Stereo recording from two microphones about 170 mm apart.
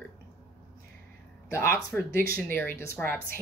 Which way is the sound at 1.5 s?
15° left (ahead or behind).